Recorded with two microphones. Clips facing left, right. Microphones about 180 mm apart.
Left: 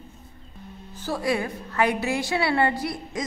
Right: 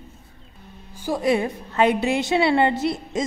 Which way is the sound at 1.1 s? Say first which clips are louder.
Right 5 dB; 20° right (ahead or behind).